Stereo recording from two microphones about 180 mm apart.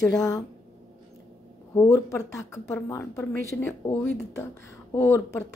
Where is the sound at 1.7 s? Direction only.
15° left (ahead or behind).